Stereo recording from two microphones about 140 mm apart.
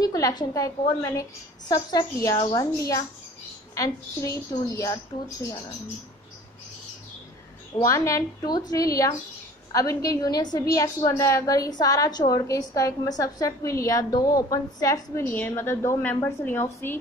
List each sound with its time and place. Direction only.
0.0 s a woman's voice: 25° left (ahead or behind)
7.8 s a woman's voice: 20° left (ahead or behind)